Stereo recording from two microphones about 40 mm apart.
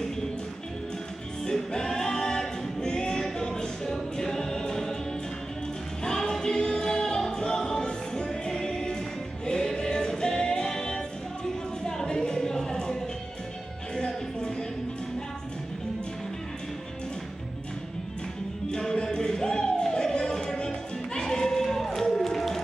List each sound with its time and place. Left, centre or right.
1.4 s choir: centre
6.0 s music: centre
18.7 s music: centre